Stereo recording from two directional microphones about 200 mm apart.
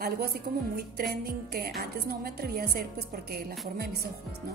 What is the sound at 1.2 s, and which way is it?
A woman's voice, 50° right (ahead or behind).